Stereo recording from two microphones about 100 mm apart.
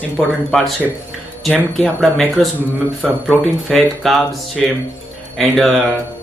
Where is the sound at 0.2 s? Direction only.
Centre (ahead or behind).